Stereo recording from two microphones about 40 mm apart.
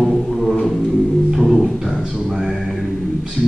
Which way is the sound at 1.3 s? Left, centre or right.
Centre.